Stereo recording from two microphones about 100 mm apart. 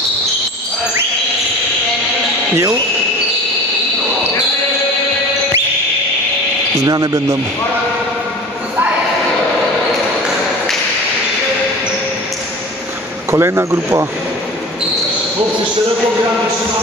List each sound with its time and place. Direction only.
2.5 s speech: 35° right (ahead or behind)
6.8 s speech: 40° right (ahead or behind)
13.3 s speech: 25° right (ahead or behind)